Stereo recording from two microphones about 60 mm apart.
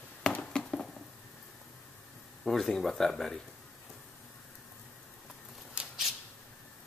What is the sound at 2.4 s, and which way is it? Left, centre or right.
Speech, centre.